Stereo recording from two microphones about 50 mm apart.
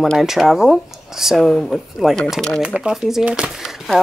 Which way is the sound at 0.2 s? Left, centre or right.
Centre.